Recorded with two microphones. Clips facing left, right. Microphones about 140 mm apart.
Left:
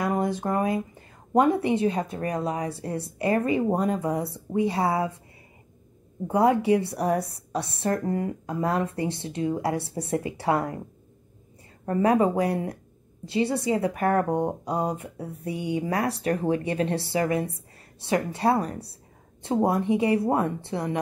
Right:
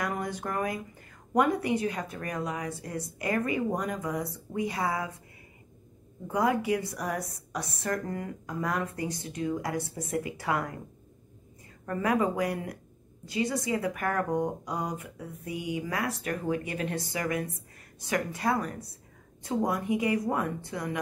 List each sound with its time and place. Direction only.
0.0 s a woman's voice: 25° left (ahead or behind)
6.2 s a woman's voice: 30° left (ahead or behind)
11.8 s a woman's voice: 30° left (ahead or behind)